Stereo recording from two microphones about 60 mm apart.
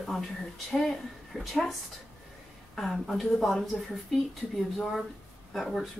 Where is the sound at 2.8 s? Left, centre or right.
Centre.